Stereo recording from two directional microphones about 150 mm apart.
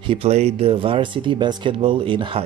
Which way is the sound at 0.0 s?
40° right (ahead or behind).